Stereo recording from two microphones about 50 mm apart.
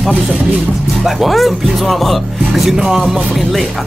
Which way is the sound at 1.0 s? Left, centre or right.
Centre.